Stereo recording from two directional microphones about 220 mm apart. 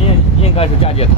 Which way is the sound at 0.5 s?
25° left (ahead or behind).